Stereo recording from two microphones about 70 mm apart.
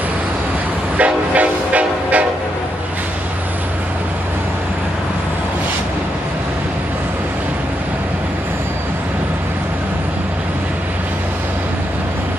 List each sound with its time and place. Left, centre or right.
0.9 s train: right